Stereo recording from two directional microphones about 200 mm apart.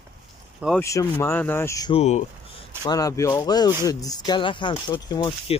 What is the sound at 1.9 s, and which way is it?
Speech, 30° left (ahead or behind).